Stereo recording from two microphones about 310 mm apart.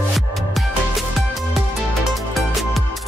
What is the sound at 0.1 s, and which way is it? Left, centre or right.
Music, centre.